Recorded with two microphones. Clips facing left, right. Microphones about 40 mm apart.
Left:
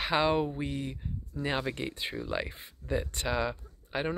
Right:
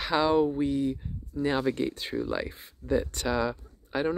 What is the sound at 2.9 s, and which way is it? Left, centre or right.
Speech, left.